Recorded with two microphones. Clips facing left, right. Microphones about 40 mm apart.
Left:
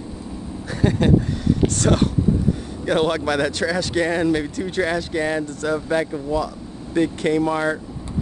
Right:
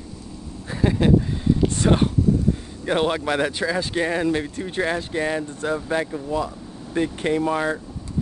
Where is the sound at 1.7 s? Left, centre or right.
Centre.